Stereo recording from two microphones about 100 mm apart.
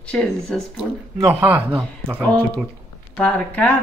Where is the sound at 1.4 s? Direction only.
20° right (ahead or behind).